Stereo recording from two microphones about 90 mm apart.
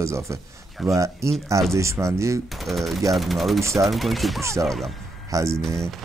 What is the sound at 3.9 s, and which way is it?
Speech, centre (ahead or behind).